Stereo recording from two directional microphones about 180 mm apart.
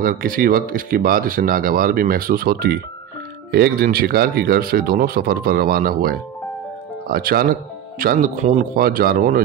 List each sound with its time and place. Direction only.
0.0 s speech: 50° right (ahead or behind)